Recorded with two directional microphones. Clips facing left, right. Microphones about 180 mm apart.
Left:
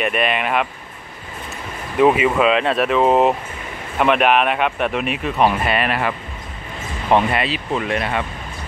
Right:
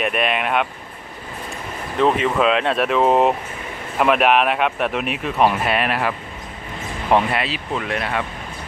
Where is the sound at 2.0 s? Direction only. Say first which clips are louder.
Left 3 dB; 10° left (ahead or behind).